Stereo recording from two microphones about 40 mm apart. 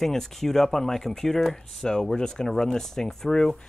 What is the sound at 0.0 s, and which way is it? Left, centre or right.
Speech, centre.